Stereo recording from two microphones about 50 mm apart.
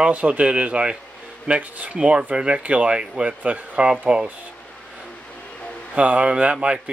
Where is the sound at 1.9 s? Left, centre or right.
Centre.